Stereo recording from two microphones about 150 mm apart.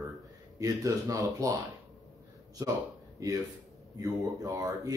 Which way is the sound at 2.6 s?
20° right (ahead or behind).